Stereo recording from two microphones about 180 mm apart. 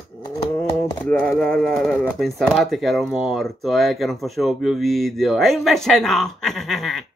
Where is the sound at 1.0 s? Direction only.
10° left (ahead or behind).